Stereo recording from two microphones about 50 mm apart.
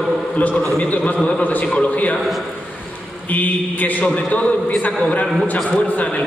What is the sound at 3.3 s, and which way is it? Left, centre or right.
A man's voice, left.